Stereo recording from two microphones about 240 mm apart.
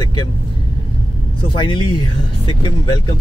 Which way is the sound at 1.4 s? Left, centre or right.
Left.